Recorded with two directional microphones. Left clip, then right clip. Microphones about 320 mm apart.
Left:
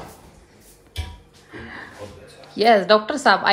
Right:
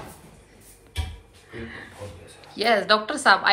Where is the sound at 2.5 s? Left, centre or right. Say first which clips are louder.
Left 5 dB; centre.